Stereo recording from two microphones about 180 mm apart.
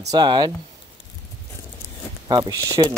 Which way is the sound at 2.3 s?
25° right (ahead or behind).